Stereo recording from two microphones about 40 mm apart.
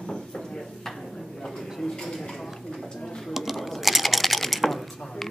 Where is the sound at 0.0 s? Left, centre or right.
Left.